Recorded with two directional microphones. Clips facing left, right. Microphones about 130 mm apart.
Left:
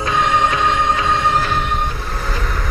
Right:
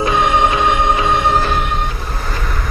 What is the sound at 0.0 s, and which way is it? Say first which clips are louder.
Music: right 3 dB; 15° right (ahead or behind).